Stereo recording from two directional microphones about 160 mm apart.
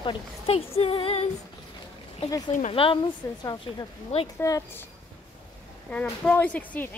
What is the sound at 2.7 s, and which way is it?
A woman's voice, 35° left (ahead or behind).